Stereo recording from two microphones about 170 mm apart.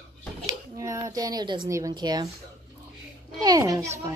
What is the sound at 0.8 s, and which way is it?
A woman's voice, 20° right (ahead or behind).